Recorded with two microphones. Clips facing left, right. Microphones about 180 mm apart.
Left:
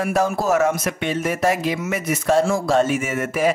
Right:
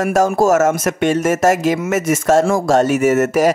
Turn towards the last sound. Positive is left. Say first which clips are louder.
# right 8 dB
turn(degrees=-40)  # may be behind; listen again after turning